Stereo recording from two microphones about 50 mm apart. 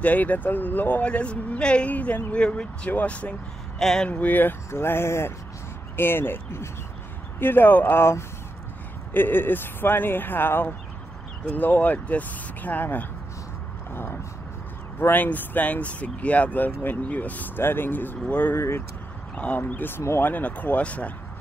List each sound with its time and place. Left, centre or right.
0.0 s speech: left
4.6 s speech: left
15.2 s speech: left
17.6 s speech: left
18.5 s speech: left
19.3 s speech: left
19.7 s speech: left